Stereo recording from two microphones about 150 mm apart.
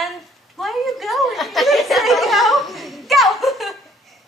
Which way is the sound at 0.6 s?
Centre (ahead or behind).